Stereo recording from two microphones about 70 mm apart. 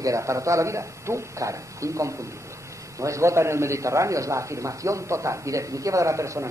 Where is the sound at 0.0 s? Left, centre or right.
Right.